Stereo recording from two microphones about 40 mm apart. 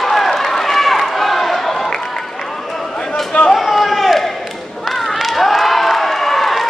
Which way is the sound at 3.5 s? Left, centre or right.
Centre.